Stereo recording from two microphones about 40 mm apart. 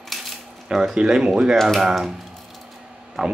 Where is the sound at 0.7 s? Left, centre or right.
Centre.